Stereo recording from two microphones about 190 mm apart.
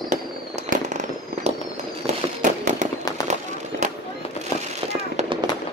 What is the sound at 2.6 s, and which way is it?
Fireworks, 40° right (ahead or behind).